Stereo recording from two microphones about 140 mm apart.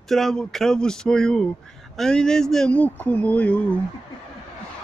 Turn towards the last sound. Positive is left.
turn(degrees=10)  # may be behind; listen again after turning